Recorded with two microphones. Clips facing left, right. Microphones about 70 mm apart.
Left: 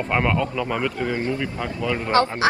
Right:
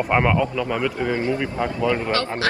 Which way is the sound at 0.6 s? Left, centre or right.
Centre.